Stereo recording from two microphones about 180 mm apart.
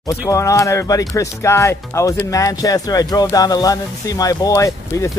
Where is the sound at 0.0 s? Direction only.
15° left (ahead or behind).